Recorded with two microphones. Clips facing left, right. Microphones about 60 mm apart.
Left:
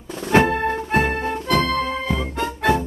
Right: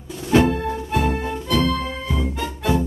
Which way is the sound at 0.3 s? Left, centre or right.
Left.